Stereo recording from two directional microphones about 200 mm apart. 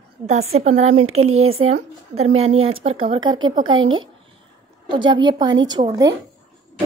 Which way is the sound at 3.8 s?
75° right (ahead or behind).